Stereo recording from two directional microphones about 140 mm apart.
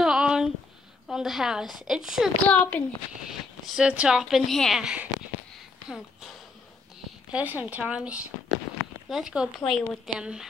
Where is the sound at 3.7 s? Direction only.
5° right (ahead or behind).